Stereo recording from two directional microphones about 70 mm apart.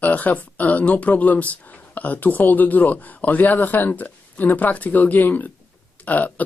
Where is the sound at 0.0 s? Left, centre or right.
Left.